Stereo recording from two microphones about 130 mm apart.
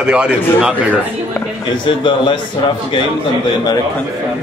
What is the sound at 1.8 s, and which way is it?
Speech, 40° left (ahead or behind).